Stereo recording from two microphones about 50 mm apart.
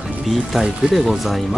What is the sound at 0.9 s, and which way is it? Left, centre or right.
Speech, centre.